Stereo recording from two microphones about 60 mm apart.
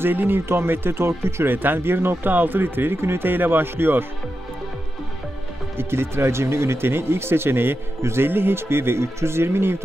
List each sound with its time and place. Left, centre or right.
0.0 s speech: right
5.8 s speech: right